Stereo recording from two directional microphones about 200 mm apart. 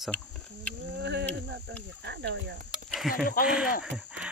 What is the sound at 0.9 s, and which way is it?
Cricket, 60° right (ahead or behind).